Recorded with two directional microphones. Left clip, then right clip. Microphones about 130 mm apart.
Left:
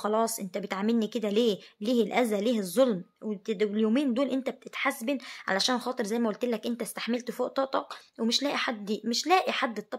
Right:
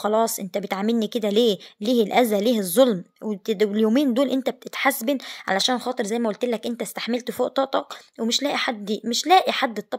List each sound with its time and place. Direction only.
0.0 s speech: 35° right (ahead or behind)